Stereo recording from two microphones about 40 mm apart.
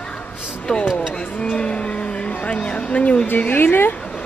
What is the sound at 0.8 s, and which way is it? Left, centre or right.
Speech, centre.